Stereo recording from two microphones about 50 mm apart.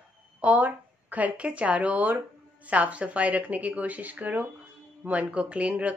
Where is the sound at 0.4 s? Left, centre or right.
Right.